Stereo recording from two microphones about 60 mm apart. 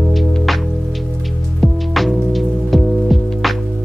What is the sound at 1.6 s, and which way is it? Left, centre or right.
Music, centre.